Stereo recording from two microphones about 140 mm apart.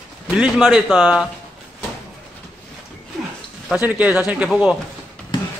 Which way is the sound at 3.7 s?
10° right (ahead or behind).